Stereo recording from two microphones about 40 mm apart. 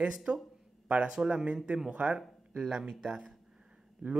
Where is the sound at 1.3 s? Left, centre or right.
Right.